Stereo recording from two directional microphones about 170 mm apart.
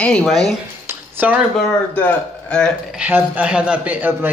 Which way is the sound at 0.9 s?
10° right (ahead or behind).